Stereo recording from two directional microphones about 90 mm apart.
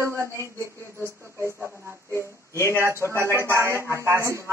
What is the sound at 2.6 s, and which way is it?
A woman's voice, 30° right (ahead or behind).